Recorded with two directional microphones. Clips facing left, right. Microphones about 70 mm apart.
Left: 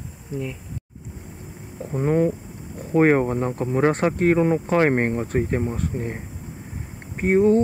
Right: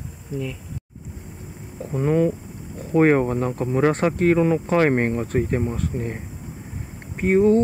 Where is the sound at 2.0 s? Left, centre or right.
Left.